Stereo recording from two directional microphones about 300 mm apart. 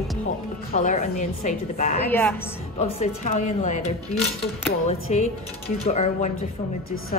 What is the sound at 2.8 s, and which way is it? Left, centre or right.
Speech, left.